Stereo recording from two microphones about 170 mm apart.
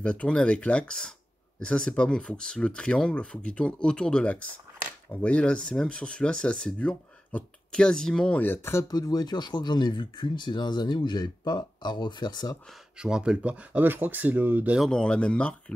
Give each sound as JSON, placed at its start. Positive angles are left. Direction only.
{"t": 0.0, "sound": "speech", "side_deg": 5}
{"t": 13.0, "sound": "speech", "side_deg": -5}
{"t": 14.9, "sound": "speech", "side_deg": 5}